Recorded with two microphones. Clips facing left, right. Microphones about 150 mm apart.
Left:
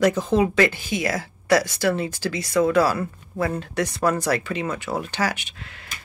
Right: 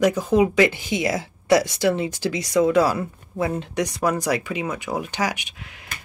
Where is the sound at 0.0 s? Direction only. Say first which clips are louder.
Right 1 dB; 10° right (ahead or behind).